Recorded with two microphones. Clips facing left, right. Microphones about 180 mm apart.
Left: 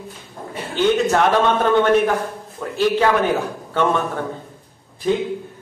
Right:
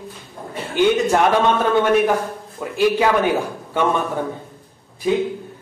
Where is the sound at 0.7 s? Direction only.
10° right (ahead or behind).